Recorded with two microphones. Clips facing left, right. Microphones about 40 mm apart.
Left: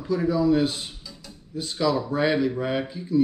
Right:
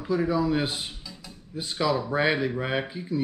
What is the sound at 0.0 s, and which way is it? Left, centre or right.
Speech, centre.